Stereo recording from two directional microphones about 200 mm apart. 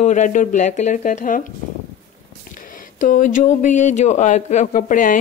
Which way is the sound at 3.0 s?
40° left (ahead or behind).